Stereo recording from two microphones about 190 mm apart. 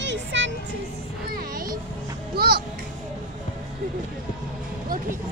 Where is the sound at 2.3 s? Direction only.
55° right (ahead or behind).